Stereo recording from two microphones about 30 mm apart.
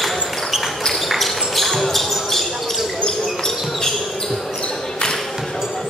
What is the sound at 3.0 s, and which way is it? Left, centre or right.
Basketball bounce, centre.